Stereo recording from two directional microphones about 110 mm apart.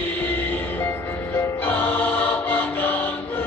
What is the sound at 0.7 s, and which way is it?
Choir, 20° left (ahead or behind).